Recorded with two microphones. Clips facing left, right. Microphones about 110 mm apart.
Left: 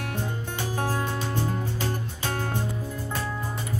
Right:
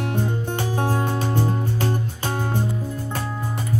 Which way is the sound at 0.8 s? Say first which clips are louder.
Right 4 dB; 25° right (ahead or behind).